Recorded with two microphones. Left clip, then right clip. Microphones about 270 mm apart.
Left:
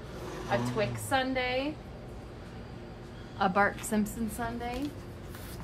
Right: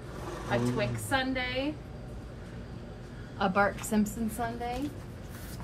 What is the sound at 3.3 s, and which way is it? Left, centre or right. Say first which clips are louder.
Speech: even; centre.